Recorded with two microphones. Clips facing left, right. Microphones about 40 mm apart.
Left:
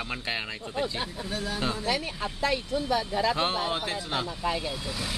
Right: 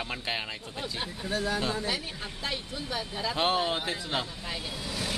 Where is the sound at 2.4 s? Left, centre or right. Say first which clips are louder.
Left 8 dB; left.